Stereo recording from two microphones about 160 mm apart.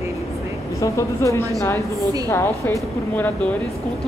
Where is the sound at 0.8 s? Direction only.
20° left (ahead or behind).